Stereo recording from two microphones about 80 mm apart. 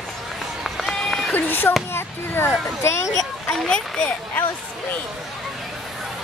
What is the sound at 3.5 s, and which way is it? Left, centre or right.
Speech, centre.